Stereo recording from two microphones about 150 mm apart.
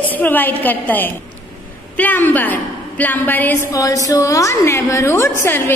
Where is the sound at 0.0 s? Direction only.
10° left (ahead or behind).